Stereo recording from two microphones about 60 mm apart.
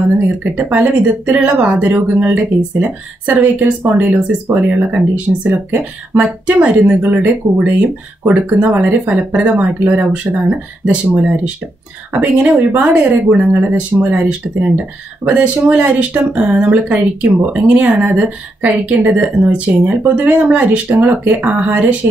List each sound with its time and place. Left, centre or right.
0.4 s speech: right
15.2 s speech: right